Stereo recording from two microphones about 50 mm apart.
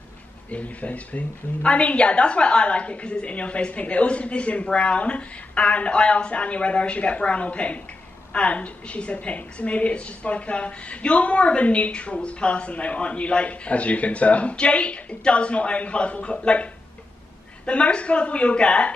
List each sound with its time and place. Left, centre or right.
0.5 s a woman's voice: left
17.6 s a woman's voice: left